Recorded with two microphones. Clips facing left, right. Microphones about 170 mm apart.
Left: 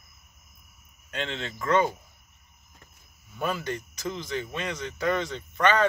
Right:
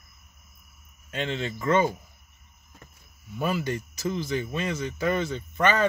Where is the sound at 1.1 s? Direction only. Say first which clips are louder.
Right 3 dB; 5° right (ahead or behind).